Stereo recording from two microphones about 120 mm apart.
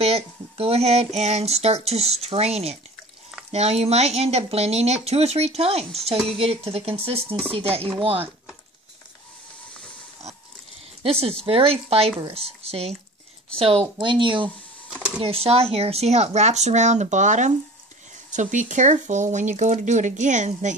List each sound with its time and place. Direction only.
0.0 s speech: 55° right (ahead or behind)
11.0 s speech: 55° right (ahead or behind)
14.9 s a sound: 5° right (ahead or behind)
15.1 s speech: 55° right (ahead or behind); by 20.7 s 90° right